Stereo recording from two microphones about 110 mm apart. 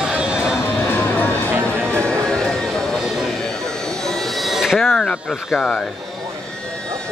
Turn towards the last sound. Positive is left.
turn(degrees=5)  # may be behind; listen again after turning